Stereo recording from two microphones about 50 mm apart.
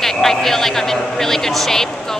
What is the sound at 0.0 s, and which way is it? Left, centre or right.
Speech, centre.